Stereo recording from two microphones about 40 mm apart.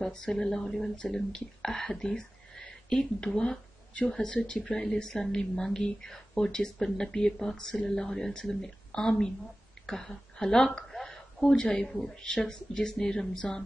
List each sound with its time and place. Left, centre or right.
0.1 s speech: centre
11.0 s a sound: centre
11.4 s speech: centre